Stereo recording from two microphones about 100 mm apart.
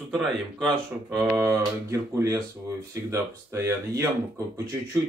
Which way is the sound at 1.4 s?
30° right (ahead or behind).